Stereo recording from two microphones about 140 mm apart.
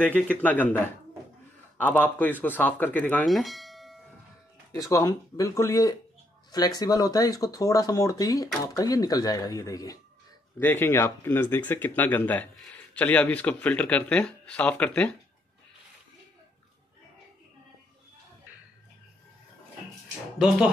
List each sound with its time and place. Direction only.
0.0 s speech: 10° left (ahead or behind)
3.3 s bell: centre (ahead or behind)
4.7 s speech: 25° left (ahead or behind)
20.3 s speech: 5° right (ahead or behind)